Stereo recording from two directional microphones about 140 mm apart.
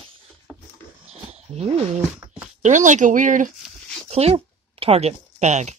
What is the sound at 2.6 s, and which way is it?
Speech, 60° right (ahead or behind).